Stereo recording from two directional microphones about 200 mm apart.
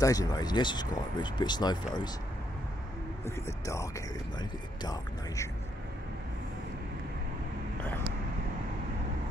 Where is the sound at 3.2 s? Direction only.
15° left (ahead or behind).